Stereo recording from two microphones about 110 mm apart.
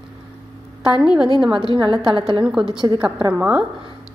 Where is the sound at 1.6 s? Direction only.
50° right (ahead or behind).